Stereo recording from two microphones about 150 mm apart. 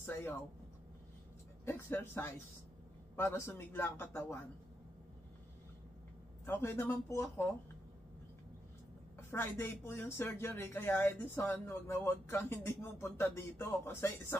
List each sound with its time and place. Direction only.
0.0 s vehicle: 15° left (ahead or behind)
1.7 s speech: 15° left (ahead or behind)
6.4 s speech: 15° left (ahead or behind)
9.3 s speech: 15° left (ahead or behind)